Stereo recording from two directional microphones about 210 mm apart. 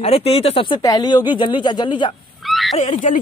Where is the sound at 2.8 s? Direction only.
35° left (ahead or behind).